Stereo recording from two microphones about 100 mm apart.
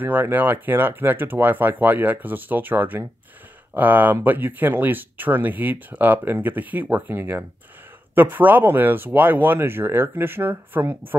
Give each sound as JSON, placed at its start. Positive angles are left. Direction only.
{"t": 0.0, "sound": "speech", "side_deg": -20}